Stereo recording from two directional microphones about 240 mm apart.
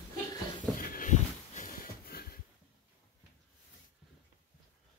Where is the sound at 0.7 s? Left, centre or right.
Left.